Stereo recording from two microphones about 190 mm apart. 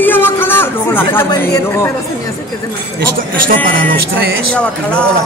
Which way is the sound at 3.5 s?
45° right (ahead or behind).